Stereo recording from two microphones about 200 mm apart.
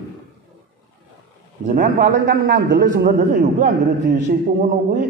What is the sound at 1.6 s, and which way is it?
Speech, 40° right (ahead or behind).